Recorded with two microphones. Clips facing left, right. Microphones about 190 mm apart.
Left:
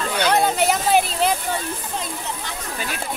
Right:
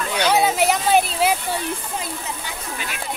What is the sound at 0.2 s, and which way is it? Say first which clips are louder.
Speech: right 1 dB; 5° right (ahead or behind).